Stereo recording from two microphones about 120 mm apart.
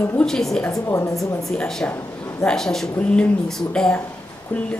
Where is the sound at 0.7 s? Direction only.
25° left (ahead or behind).